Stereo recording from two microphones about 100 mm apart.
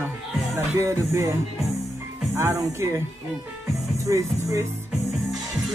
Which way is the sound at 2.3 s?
30° right (ahead or behind).